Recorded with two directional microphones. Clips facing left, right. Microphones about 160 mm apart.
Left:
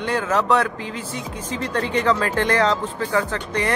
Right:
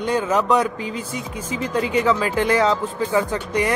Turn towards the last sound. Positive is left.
turn(degrees=-10)  # may be behind; listen again after turning